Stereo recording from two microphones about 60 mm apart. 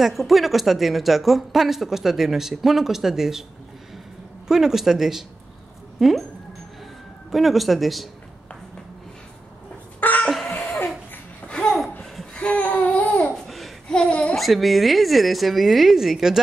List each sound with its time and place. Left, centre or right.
0.0 s speech: centre
4.5 s speech: centre
7.2 s speech: centre
9.9 s a sound: left
11.4 s laughter: centre
12.4 s babbling: left
13.3 s laughter: centre
13.8 s a sound: centre
14.3 s speech: centre